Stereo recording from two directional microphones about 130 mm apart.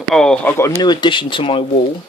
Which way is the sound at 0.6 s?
30° left (ahead or behind).